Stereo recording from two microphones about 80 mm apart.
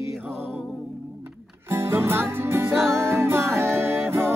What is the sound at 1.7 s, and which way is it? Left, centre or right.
Music, right.